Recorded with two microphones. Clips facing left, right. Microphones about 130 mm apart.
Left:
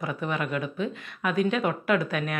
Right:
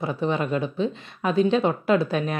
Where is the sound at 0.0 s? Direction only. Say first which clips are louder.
Right 5 dB; 30° right (ahead or behind).